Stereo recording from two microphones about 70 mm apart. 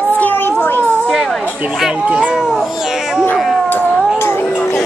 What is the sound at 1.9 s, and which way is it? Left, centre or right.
Speech, centre.